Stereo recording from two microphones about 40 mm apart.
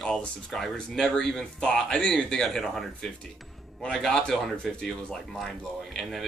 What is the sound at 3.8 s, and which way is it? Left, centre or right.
A man's voice, centre.